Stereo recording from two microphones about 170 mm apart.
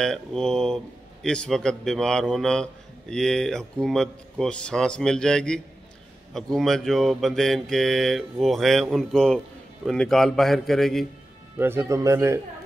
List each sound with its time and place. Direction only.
0.0 s speech: 5° left (ahead or behind)
11.5 s speech: 15° right (ahead or behind)